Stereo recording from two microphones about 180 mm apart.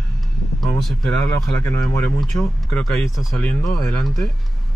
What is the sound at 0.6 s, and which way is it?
Speech, centre (ahead or behind).